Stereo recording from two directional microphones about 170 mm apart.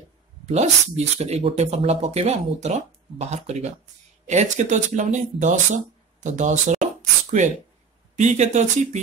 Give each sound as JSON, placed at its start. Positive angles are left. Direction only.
{"t": 0.5, "sound": "speech", "side_deg": -40}
{"t": 6.2, "sound": "a sound", "side_deg": -45}
{"t": 8.2, "sound": "speech", "side_deg": -45}